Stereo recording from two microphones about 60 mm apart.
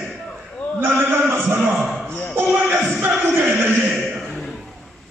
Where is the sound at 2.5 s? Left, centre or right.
Right.